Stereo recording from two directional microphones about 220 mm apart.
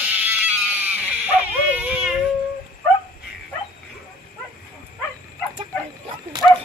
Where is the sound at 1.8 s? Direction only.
5° right (ahead or behind).